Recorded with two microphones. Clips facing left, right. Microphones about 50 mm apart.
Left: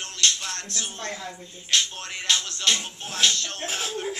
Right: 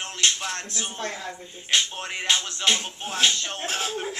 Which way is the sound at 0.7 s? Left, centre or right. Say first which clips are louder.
Right 2 dB; centre.